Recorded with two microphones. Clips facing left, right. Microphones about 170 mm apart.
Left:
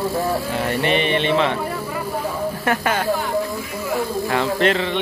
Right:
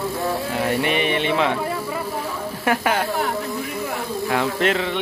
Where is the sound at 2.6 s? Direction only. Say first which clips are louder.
Right 2 dB; 10° right (ahead or behind).